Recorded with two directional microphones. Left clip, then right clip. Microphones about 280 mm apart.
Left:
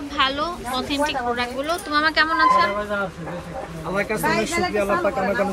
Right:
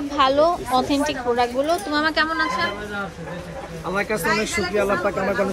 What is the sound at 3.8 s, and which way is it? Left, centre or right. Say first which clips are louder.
Speech: even; centre.